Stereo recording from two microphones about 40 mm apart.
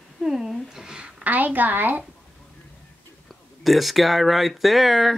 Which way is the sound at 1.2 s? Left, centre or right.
Right.